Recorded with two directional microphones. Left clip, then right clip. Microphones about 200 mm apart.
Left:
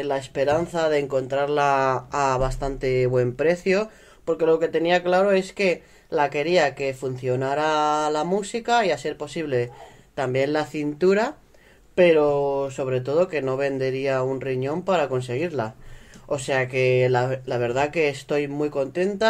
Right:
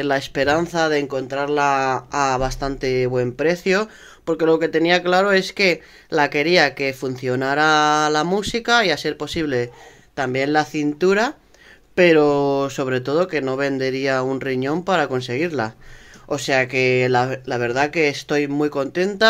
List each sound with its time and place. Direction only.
0.0 s speech: 30° right (ahead or behind)
10.1 s speech: 20° right (ahead or behind)
11.9 s speech: 30° right (ahead or behind)